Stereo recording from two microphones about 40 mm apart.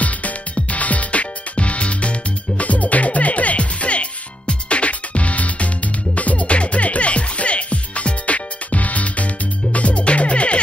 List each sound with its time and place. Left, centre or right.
0.0 s music: left